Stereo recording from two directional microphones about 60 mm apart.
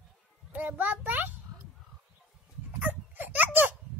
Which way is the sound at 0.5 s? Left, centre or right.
Right.